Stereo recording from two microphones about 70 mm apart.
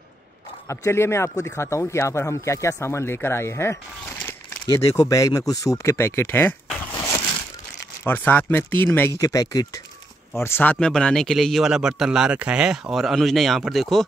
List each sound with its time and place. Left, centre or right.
0.7 s speech: left
4.7 s speech: left
5.9 s speech: left
8.0 s speech: left
9.1 s speech: left
10.3 s speech: left
10.8 s speech: centre